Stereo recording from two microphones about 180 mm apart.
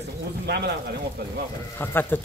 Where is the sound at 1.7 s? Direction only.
10° left (ahead or behind).